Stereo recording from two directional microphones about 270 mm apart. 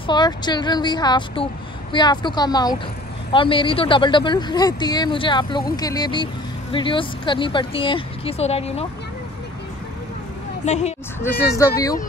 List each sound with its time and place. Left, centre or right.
0.0 s speech: centre
10.6 s speech: left
11.2 s speech: centre